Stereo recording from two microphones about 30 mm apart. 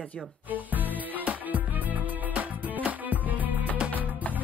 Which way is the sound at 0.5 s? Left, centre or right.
Right.